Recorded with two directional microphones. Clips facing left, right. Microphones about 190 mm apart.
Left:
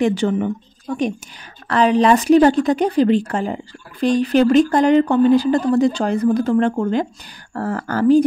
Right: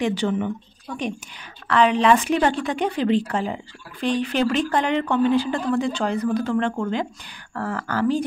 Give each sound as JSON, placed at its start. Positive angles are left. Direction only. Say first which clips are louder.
{"t": 0.0, "sound": "a woman's voice", "louder": "left 5 dB", "side_deg": 50}